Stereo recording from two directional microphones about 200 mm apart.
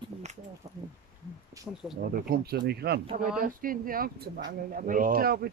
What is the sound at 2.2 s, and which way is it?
Speech, 45° right (ahead or behind).